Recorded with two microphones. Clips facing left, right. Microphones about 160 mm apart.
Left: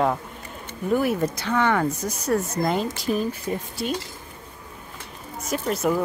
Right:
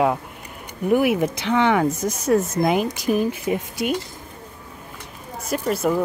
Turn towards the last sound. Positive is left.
turn(degrees=-5)  # may be behind; listen again after turning